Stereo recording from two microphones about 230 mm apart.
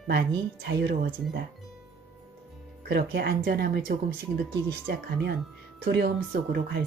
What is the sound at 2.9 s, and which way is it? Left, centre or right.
Speech, right.